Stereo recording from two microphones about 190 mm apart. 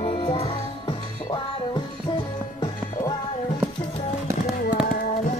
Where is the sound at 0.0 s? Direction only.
25° left (ahead or behind).